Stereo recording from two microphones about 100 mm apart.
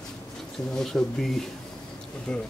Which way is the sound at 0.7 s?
5° left (ahead or behind).